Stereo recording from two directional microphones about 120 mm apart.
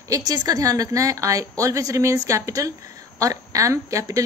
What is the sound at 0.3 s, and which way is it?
A woman's voice, 30° right (ahead or behind).